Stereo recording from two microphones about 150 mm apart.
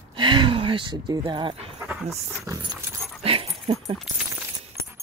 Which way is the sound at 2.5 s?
20° right (ahead or behind).